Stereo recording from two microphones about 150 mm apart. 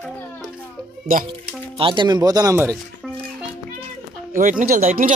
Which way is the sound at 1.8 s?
35° right (ahead or behind).